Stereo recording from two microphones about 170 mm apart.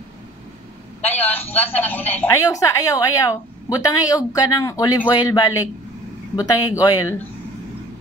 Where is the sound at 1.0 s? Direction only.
10° left (ahead or behind).